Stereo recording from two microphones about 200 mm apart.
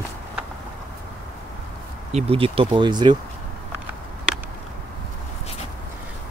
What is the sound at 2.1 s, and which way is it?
Speech, 30° right (ahead or behind).